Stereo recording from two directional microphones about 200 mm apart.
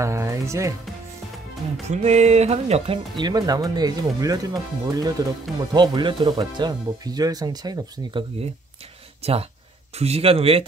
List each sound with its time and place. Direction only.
0.0 s speech: 15° right (ahead or behind)
1.9 s speech: 35° right (ahead or behind)